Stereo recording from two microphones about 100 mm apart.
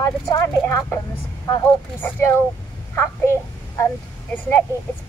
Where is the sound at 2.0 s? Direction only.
20° left (ahead or behind).